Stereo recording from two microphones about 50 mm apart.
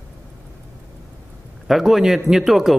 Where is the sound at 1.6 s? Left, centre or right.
Centre.